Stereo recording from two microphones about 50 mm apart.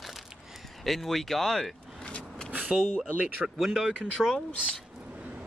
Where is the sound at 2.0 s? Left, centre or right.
Centre.